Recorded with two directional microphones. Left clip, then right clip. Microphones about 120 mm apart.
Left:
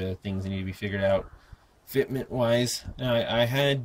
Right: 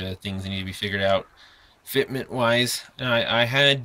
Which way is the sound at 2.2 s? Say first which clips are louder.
Right 4 dB; 40° right (ahead or behind).